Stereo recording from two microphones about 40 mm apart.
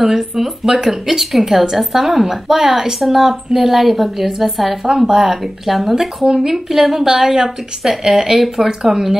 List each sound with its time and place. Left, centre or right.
0.0 s a woman's voice: centre
4.8 s speech: centre
5.2 s a woman's voice: centre